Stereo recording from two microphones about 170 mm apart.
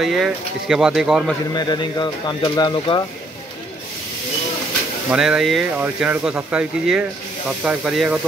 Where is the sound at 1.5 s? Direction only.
25° left (ahead or behind).